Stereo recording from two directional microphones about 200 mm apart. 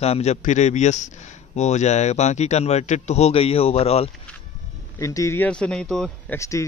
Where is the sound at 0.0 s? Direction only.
30° left (ahead or behind).